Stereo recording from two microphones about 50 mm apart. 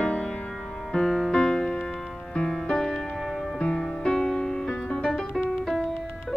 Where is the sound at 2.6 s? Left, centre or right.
Centre.